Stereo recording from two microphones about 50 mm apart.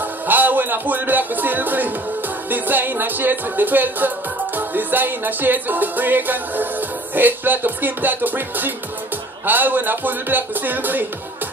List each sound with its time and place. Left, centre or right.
0.0 s music: right